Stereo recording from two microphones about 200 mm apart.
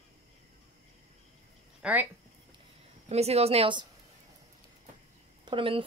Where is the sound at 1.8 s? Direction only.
5° right (ahead or behind).